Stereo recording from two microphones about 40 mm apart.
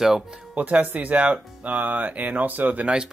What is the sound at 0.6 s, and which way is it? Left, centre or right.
Speech, right.